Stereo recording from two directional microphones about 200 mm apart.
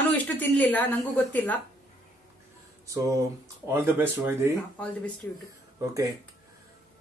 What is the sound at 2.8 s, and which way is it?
A man's voice, 15° right (ahead or behind).